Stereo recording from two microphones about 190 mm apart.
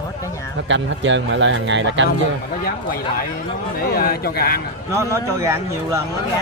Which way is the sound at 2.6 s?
50° left (ahead or behind).